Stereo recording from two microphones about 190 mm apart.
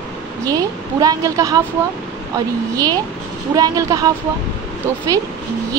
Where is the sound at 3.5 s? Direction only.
20° right (ahead or behind).